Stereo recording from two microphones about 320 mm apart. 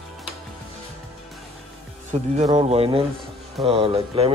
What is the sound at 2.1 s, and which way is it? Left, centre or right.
Speech, right.